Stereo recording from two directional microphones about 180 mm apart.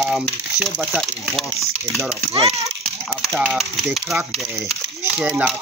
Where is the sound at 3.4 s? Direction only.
Centre (ahead or behind).